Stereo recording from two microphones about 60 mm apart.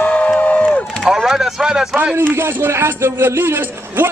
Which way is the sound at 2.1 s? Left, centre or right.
Right.